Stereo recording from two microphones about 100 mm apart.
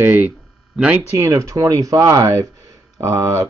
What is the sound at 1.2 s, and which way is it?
Speech, 30° right (ahead or behind).